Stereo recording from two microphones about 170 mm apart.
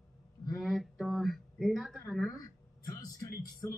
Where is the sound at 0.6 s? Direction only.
Centre (ahead or behind).